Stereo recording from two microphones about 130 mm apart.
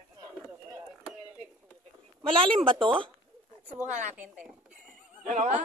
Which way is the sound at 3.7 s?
65° right (ahead or behind).